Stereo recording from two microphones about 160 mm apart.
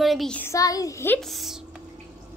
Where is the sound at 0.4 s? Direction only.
20° left (ahead or behind).